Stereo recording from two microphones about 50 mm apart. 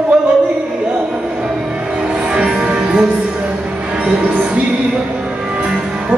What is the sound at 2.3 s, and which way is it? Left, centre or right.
Music, centre.